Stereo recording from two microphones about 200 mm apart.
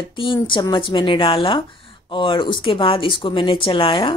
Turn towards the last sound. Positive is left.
turn(degrees=25)  # may be behind; listen again after turning